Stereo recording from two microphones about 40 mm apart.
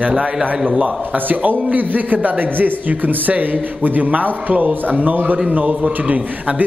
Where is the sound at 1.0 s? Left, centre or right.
Right.